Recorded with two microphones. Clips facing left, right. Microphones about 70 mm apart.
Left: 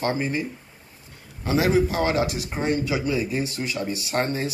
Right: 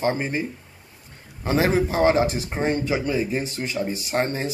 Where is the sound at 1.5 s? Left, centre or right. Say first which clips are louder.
Even; right.